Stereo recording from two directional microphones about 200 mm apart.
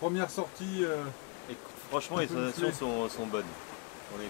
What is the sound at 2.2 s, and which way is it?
Speech, 20° left (ahead or behind).